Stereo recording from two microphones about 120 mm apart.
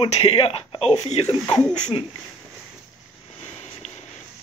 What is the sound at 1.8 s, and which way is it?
Speech, 40° left (ahead or behind).